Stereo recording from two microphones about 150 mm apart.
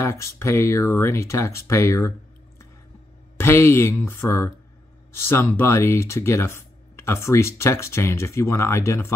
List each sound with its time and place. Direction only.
0.0 s speech: 15° left (ahead or behind)
3.3 s speech: 15° left (ahead or behind)